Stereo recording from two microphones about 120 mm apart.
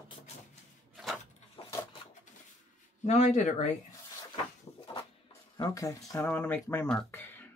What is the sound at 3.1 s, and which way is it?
Speech, 70° left (ahead or behind).